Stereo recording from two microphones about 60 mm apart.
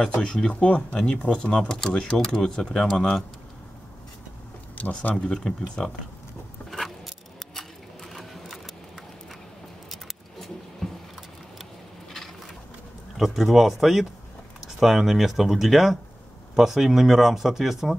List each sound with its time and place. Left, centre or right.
0.1 s speech: centre
4.7 s speech: left
5.1 s speech: centre
6.7 s a sound: centre
13.2 s speech: centre